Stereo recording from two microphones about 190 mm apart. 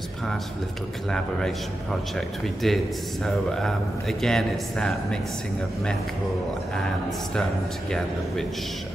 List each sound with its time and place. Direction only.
1.1 s a man's voice: centre (ahead or behind)